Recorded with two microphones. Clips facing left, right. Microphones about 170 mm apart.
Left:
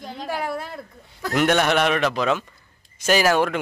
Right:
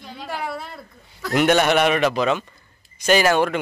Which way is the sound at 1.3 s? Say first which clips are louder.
Right 2 dB; 5° right (ahead or behind).